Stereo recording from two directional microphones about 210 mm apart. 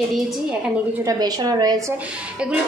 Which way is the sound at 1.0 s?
20° right (ahead or behind).